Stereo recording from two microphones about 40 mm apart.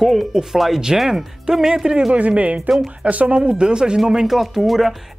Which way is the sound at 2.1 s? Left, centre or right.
Right.